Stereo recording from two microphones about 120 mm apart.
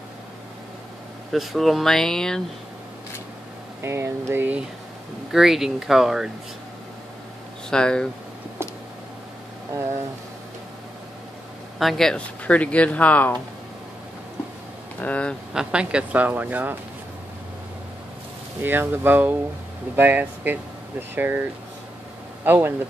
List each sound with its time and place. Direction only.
1.3 s speech: centre (ahead or behind)
3.8 s speech: 20° right (ahead or behind)
5.3 s speech: 5° right (ahead or behind)
7.7 s speech: 5° left (ahead or behind)
11.8 s speech: centre (ahead or behind)
15.0 s speech: 10° left (ahead or behind)
15.5 s speech: 10° right (ahead or behind)
18.6 s speech: 15° right (ahead or behind)